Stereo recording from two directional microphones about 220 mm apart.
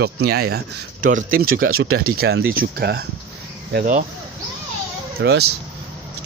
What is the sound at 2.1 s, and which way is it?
Speech, 45° right (ahead or behind).